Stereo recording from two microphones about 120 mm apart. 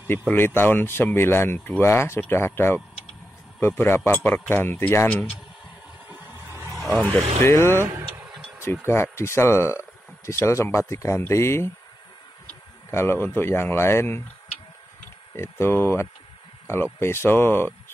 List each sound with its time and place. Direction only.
0.3 s speech: 20° left (ahead or behind)
6.0 s vehicle: 15° right (ahead or behind)
6.9 s speech: 10° left (ahead or behind)
7.4 s speech: 20° left (ahead or behind)
8.8 s speech: 20° left (ahead or behind)
12.9 s speech: 20° left (ahead or behind)
15.6 s speech: 20° left (ahead or behind)